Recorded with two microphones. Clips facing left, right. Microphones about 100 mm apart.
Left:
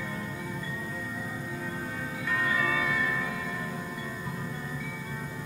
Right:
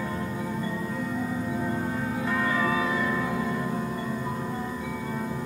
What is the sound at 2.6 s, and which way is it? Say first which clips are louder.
Music: right 4 dB; 30° right (ahead or behind).